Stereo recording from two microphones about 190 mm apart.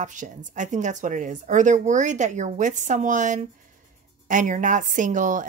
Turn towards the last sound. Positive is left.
turn(degrees=-40)  # may be behind; listen again after turning